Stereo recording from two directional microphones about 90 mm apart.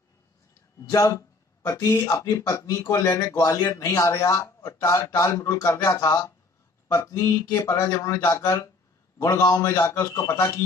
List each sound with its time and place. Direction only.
0.8 s speech: 35° left (ahead or behind)